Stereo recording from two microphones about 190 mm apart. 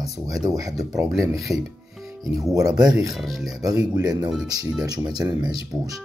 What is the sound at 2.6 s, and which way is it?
Speech, 20° right (ahead or behind).